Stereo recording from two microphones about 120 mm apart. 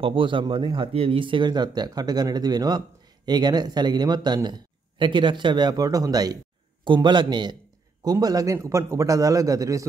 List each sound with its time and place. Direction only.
0.0 s a man's voice: 45° right (ahead or behind); by 9.8 s 30° right (ahead or behind)